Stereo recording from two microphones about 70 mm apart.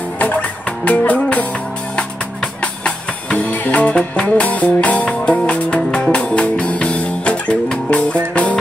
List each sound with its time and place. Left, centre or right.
0.2 s music: left
2.6 s music: centre